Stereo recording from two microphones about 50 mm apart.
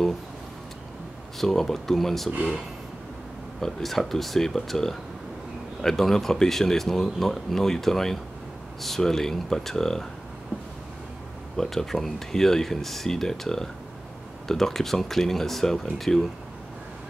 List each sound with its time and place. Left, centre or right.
1.4 s speech: centre
2.3 s speech: right
3.6 s speech: centre
11.5 s speech: centre